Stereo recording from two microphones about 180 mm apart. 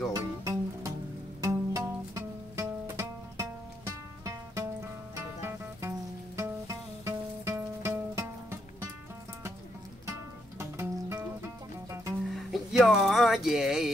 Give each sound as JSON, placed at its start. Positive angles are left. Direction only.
{"t": 0.1, "sound": "music", "side_deg": -15}
{"t": 10.0, "sound": "music", "side_deg": -15}
{"t": 12.3, "sound": "speech", "side_deg": 0}